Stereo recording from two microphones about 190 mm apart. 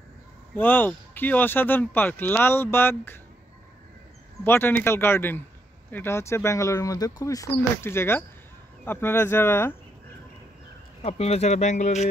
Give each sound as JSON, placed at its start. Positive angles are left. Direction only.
{"t": 0.6, "sound": "speech", "side_deg": 10}
{"t": 4.5, "sound": "speech", "side_deg": 10}
{"t": 11.0, "sound": "speech", "side_deg": 35}